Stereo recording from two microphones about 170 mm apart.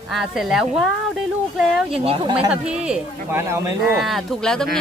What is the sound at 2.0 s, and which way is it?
Speech, 35° right (ahead or behind).